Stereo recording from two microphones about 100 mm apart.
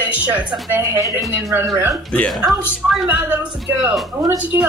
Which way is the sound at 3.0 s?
20° right (ahead or behind).